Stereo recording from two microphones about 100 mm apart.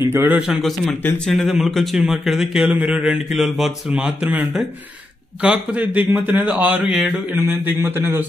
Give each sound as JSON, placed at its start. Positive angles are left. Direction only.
{"t": 0.0, "sound": "a man's voice", "side_deg": -25}
{"t": 0.4, "sound": "a man's voice", "side_deg": -5}